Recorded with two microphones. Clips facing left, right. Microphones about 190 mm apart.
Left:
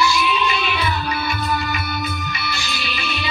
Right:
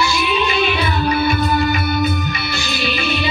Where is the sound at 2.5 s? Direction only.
60° right (ahead or behind).